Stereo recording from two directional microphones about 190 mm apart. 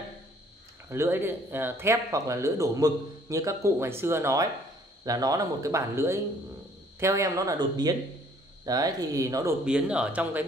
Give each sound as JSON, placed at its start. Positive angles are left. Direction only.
{"t": 0.8, "sound": "speech", "side_deg": -15}
{"t": 9.7, "sound": "speech", "side_deg": -5}